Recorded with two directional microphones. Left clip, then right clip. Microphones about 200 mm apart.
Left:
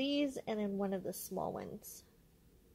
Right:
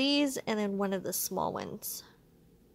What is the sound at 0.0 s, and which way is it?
A woman's voice, 20° right (ahead or behind).